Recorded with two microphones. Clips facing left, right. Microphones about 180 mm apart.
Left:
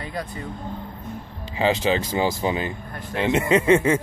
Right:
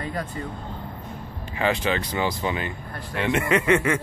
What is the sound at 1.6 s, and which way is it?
Speech, 30° left (ahead or behind).